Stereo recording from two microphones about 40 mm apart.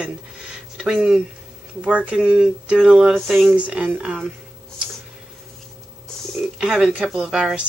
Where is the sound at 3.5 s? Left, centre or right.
Right.